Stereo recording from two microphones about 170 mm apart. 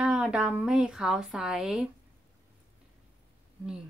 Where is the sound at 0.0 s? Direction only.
5° right (ahead or behind).